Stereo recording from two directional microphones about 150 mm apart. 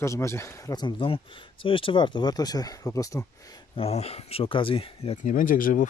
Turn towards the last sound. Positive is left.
turn(degrees=65)  # may be behind; listen again after turning